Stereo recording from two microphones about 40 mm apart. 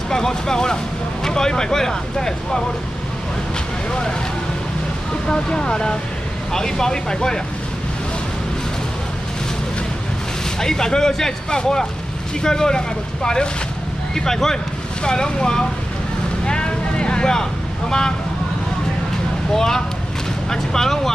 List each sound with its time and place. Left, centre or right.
0.1 s speech: centre
5.3 s speech: left
10.6 s speech: centre
16.4 s vehicle: left
19.5 s speech: centre